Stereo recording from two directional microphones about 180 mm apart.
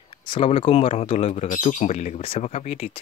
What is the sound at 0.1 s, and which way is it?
Speech, 25° left (ahead or behind).